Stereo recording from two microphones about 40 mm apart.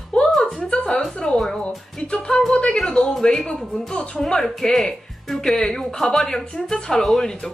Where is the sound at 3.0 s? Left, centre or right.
Centre.